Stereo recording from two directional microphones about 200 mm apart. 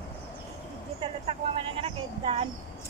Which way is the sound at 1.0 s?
25° right (ahead or behind).